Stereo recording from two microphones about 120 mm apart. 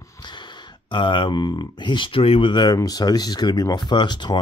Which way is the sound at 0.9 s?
45° left (ahead or behind).